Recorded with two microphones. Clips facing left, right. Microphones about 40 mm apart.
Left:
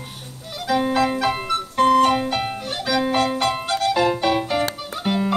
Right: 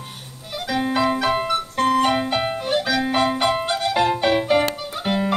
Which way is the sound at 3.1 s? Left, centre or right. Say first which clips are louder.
Right 1 dB; centre.